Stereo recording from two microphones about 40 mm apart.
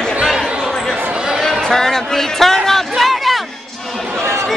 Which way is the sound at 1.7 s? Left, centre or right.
Centre.